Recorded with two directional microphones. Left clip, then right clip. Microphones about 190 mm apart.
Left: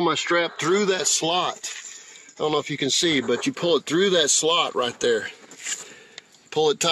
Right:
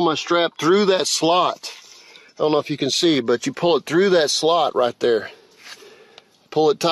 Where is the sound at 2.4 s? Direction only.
35° right (ahead or behind).